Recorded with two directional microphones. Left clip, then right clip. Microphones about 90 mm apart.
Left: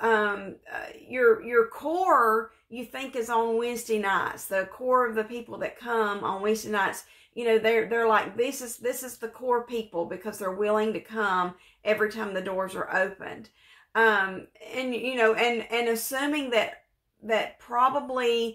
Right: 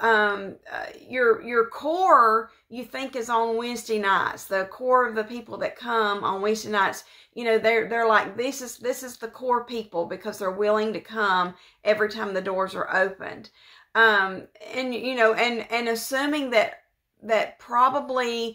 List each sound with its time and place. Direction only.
0.0 s speech: 15° right (ahead or behind)